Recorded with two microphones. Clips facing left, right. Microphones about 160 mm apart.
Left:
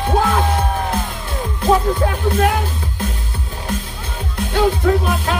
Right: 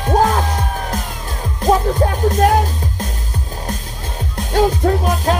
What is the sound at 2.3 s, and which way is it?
Music, 40° right (ahead or behind).